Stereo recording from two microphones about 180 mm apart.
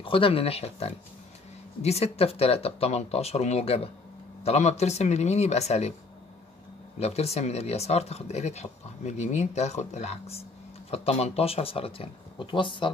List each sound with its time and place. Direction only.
0.0 s speech: 30° left (ahead or behind)
7.0 s speech: 35° left (ahead or behind)